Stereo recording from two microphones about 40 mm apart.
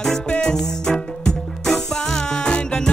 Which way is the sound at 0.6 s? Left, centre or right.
Centre.